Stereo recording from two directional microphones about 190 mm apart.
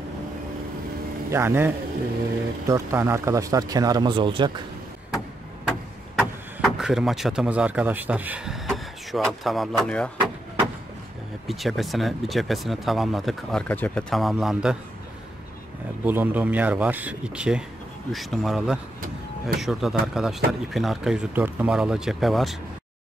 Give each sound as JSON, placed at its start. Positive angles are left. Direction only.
{"t": 1.3, "sound": "speech", "side_deg": -10}
{"t": 2.7, "sound": "speech", "side_deg": -15}
{"t": 5.7, "sound": "a sound", "side_deg": 0}
{"t": 8.6, "sound": "speech", "side_deg": 0}
{"t": 11.4, "sound": "speech", "side_deg": 0}
{"t": 16.0, "sound": "speech", "side_deg": -10}